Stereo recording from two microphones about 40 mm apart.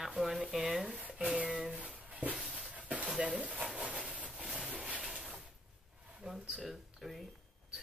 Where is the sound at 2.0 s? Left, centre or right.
Right.